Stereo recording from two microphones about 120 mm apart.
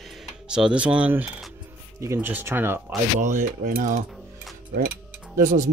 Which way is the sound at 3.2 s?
90° right.